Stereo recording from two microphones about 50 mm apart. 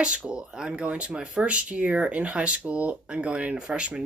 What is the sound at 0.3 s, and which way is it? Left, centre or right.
Speech, centre.